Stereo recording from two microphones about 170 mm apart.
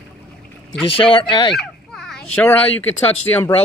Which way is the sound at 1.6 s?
Centre (ahead or behind).